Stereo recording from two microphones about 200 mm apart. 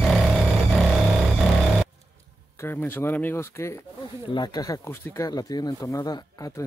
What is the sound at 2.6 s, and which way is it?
Speech, 10° left (ahead or behind).